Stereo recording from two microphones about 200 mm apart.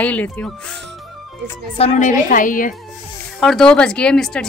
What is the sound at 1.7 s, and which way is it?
A woman's voice, 30° left (ahead or behind).